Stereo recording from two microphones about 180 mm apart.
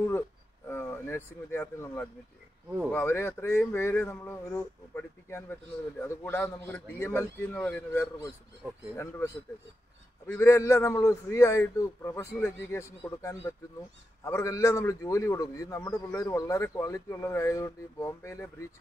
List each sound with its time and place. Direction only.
0.7 s speech: 15° left (ahead or behind)